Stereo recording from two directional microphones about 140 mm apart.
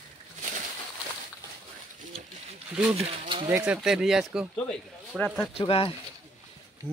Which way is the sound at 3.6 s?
5° right (ahead or behind).